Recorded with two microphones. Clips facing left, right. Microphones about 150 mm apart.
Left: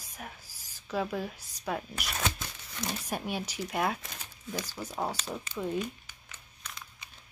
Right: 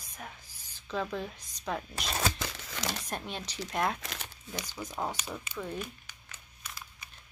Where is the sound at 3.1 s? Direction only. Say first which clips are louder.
Left 4 dB; 10° left (ahead or behind).